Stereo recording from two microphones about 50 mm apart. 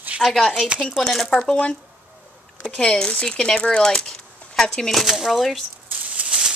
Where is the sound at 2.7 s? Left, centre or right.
Centre.